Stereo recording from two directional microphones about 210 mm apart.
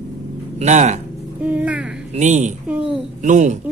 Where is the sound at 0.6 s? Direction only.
35° right (ahead or behind).